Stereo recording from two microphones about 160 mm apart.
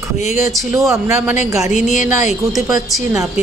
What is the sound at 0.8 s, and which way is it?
Speech, 20° right (ahead or behind).